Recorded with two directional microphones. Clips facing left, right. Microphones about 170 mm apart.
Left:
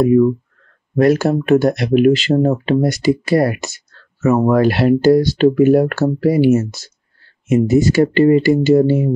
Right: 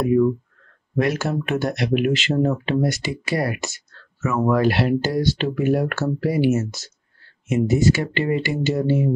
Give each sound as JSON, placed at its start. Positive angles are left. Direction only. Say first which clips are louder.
{"t": 0.9, "sound": "speech", "louder": "left 9 dB", "side_deg": 35}